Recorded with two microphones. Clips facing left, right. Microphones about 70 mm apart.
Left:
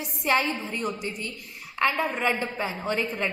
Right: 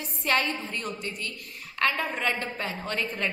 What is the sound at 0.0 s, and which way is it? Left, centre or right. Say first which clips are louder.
A woman's voice: left 2 dB; centre.